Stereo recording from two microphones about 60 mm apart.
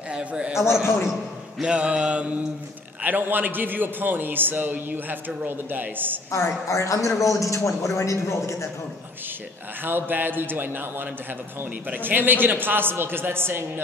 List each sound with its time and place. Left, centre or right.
0.1 s a man's voice: centre
1.6 s mantra: centre
3.0 s a man's voice: right
6.3 s a man's voice: left
9.8 s a man's voice: right
11.9 s a man's voice: right